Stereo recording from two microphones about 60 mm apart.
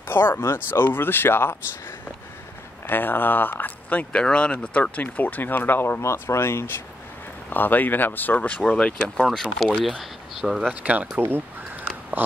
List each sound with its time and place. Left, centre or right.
0.1 s speech: left
2.9 s speech: left
4.1 s speech: centre; by 6.8 s left
7.4 s speech: left; by 9.5 s centre
9.8 s speech: centre
10.7 s speech: right
11.1 s speech: right